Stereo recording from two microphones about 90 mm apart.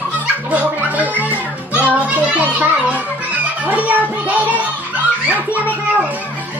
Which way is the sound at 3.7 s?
20° right (ahead or behind).